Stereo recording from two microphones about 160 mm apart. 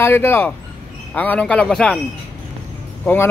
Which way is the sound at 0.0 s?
15° left (ahead or behind).